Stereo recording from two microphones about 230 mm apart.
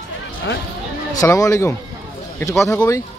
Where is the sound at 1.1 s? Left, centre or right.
Centre.